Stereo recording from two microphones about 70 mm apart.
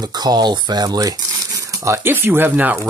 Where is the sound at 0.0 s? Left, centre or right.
Right.